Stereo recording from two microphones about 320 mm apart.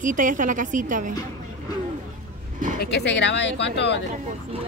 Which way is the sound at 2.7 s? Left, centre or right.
Left.